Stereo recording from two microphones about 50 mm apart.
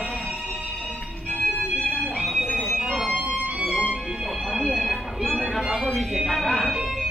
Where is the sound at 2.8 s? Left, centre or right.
Centre.